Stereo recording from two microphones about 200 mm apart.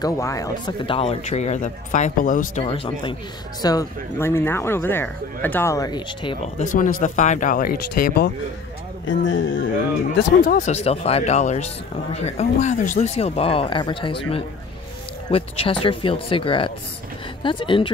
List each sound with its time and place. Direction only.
0.0 s speech: 15° left (ahead or behind)
3.6 s speech: 15° left (ahead or behind)
6.6 s speech: 40° left (ahead or behind)
9.0 s speech: 70° left (ahead or behind)
10.4 s speech: 40° left (ahead or behind); by 17.9 s 25° left (ahead or behind)